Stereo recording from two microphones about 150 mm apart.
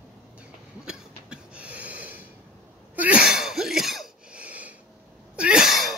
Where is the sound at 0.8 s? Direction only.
5° right (ahead or behind).